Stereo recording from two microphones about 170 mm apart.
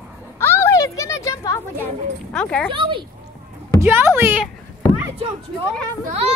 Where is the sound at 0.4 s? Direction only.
15° left (ahead or behind).